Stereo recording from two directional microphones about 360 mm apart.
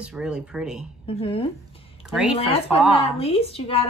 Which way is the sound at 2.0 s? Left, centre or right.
Centre.